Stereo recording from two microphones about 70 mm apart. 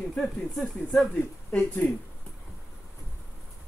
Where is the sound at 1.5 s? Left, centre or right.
Left.